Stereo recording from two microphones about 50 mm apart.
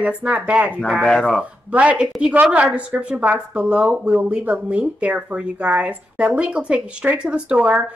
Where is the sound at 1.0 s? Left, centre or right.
Centre.